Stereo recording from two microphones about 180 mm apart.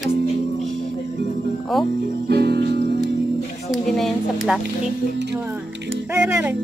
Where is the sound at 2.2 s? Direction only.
65° right (ahead or behind).